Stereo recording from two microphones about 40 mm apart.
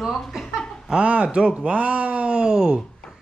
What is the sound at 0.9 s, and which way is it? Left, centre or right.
Speech, right.